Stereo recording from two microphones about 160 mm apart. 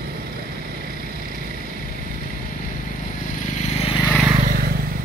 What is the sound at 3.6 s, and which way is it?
Vehicle, 40° left (ahead or behind).